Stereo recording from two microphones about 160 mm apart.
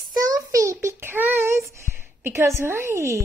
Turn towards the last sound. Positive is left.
turn(degrees=-20)  # may be behind; listen again after turning